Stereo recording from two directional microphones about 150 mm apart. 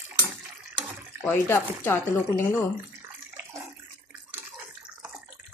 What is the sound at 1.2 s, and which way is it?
Speech, 15° left (ahead or behind).